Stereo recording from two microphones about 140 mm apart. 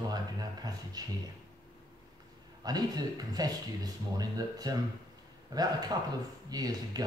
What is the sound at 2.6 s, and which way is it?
Speech, 30° right (ahead or behind).